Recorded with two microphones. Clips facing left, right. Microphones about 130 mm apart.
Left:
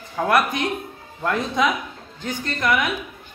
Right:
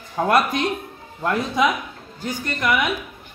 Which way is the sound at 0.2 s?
20° right (ahead or behind).